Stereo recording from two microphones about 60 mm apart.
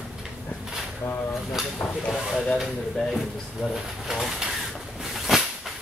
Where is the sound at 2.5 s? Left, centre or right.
Centre.